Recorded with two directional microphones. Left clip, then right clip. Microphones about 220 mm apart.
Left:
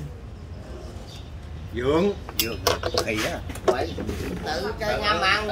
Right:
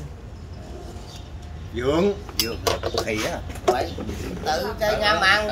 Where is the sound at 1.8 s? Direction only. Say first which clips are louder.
Even; 30° right (ahead or behind).